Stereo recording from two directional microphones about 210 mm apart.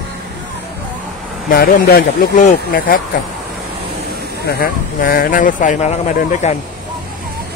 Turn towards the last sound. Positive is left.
turn(degrees=35)  # may be behind; listen again after turning